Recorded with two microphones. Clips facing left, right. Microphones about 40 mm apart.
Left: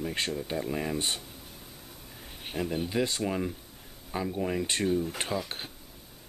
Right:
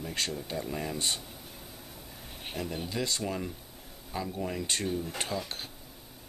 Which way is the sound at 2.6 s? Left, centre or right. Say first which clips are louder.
Left 5 dB; centre.